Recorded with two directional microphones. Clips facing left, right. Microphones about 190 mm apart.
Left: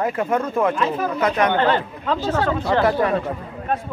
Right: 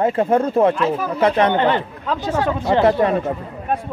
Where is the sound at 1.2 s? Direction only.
30° right (ahead or behind).